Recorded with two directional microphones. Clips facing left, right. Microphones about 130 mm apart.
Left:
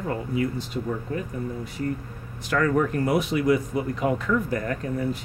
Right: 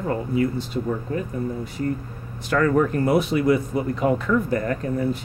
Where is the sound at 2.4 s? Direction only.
40° right (ahead or behind).